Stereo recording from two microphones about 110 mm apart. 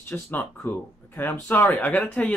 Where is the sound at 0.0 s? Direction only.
20° left (ahead or behind).